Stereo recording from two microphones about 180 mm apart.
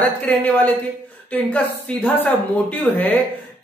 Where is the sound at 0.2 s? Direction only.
10° left (ahead or behind).